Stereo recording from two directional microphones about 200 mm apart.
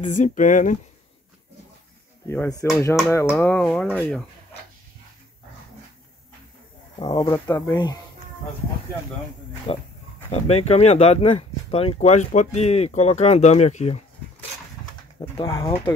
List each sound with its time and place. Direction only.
0.0 s speech: 35° left (ahead or behind)
2.2 s speech: 10° left (ahead or behind)
7.0 s speech: 20° left (ahead or behind)
9.7 s speech: 30° left (ahead or behind)
15.1 s speech: 20° left (ahead or behind)